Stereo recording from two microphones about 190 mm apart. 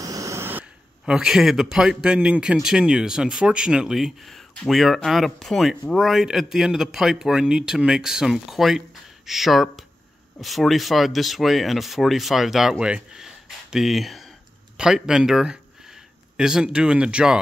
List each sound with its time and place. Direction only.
0.0 s speech: 15° right (ahead or behind)